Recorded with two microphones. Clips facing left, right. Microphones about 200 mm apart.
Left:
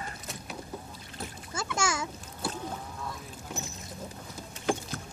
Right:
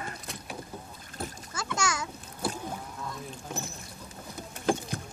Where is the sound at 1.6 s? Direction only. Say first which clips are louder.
Left 1 dB; 25° left (ahead or behind).